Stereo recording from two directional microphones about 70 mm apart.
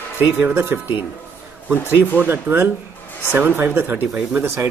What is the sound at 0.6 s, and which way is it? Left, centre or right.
Speech, right.